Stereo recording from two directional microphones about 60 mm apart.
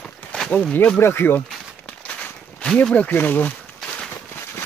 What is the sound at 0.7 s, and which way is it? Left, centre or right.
Speech, left.